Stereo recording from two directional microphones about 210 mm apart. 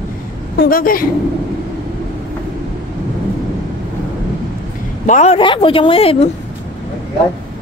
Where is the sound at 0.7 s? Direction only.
45° left (ahead or behind).